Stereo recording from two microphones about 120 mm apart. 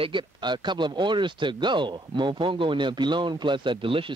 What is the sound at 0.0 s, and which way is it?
Speech, 40° right (ahead or behind).